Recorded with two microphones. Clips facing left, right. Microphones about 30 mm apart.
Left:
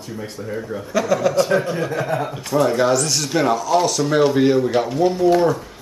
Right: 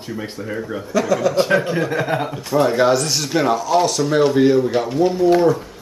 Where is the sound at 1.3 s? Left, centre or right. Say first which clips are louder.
Right 1 dB; right; by 5.6 s centre.